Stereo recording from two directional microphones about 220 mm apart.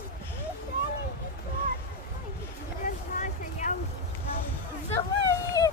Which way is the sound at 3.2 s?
35° left (ahead or behind).